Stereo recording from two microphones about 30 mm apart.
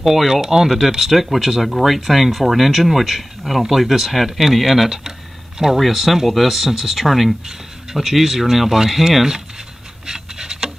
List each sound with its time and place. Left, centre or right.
0.0 s speech: centre
5.6 s speech: centre
6.2 s speech: centre
6.5 s speech: centre
10.0 s rub: right